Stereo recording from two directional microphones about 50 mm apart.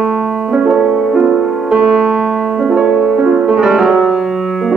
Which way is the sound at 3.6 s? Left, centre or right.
Centre.